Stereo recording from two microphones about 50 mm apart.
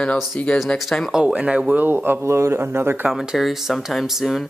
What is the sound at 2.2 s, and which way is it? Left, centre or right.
Speech, right.